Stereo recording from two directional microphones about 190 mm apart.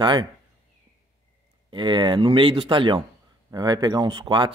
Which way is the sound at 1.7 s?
25° right (ahead or behind).